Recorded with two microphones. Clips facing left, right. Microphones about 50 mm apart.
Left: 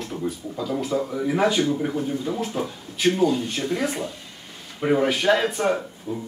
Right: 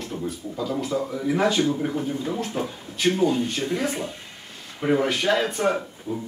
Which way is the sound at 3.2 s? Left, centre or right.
Centre.